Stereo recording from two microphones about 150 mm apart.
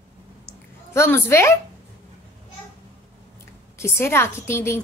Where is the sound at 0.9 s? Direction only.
15° left (ahead or behind).